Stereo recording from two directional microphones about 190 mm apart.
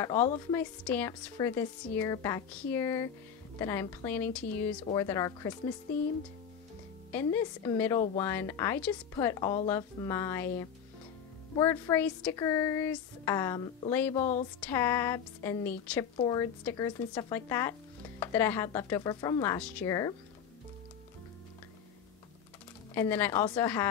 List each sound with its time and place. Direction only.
0.0 s a woman's voice: 15° left (ahead or behind)
7.1 s a woman's voice: 10° left (ahead or behind)
16.2 s a woman's voice: 20° left (ahead or behind)
22.9 s a woman's voice: 10° left (ahead or behind)